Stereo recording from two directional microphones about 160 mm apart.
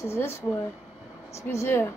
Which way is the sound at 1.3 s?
15° left (ahead or behind).